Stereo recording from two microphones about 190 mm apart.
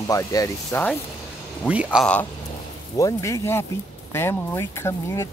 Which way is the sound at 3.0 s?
15° left (ahead or behind).